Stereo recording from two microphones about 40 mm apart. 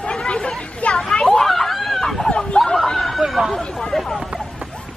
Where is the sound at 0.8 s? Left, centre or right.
Left.